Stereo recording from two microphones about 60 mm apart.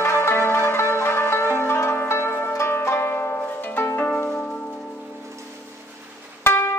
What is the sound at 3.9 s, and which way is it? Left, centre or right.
Harp, left.